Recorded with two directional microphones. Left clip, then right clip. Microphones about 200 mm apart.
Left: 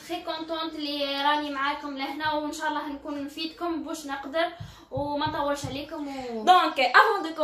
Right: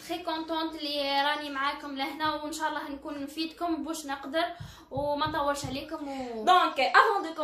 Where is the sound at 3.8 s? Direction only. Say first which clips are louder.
Left 1 dB; 45° right (ahead or behind).